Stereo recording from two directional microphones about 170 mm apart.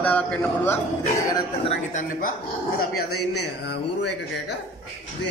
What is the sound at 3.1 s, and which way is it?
Speech, 80° left.